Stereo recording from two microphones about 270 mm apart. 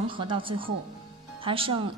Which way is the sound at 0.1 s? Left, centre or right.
Centre.